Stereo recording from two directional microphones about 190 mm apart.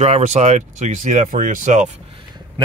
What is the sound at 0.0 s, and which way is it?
Speech, 35° right (ahead or behind).